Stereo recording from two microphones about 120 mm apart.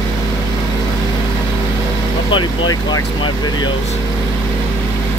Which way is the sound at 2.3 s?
40° left (ahead or behind).